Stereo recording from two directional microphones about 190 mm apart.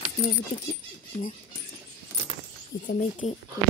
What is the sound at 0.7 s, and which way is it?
Speech, 35° left (ahead or behind).